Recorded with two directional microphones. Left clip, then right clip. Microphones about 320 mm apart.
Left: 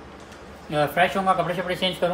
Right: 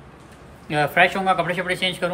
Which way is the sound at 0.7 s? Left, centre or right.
Centre.